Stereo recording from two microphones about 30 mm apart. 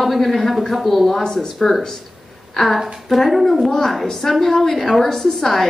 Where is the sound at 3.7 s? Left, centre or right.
Centre.